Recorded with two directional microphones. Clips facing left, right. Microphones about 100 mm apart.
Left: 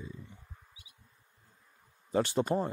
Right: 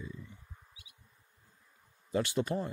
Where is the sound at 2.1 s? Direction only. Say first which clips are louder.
Left 3 dB; 35° left (ahead or behind).